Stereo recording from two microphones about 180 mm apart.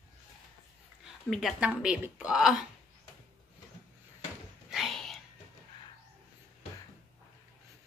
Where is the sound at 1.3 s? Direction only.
5° right (ahead or behind).